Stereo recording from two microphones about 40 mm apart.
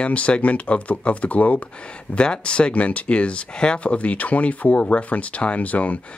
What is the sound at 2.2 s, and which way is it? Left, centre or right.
Speech, left.